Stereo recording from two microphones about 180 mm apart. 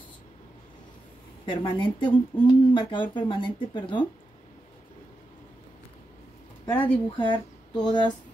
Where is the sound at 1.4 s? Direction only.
25° left (ahead or behind).